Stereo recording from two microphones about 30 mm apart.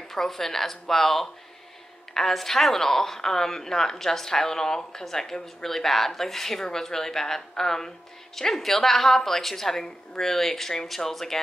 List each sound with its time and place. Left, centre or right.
0.1 s a woman's voice: centre